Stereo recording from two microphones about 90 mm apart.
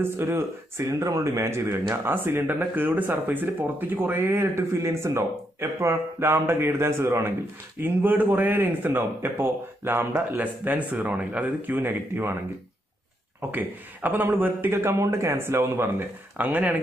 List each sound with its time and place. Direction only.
0.0 s speech: 25° right (ahead or behind)
13.5 s speech: 20° right (ahead or behind)
16.3 s speech: 15° right (ahead or behind)